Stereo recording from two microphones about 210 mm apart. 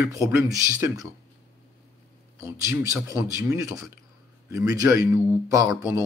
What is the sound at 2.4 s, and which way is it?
A man's voice, 15° right (ahead or behind).